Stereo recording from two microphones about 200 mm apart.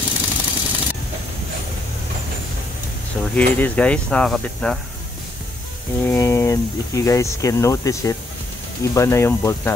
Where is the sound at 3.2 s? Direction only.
10° left (ahead or behind).